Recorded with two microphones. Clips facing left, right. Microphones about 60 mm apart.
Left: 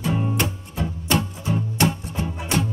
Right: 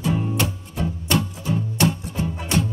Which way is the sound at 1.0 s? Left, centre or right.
Left.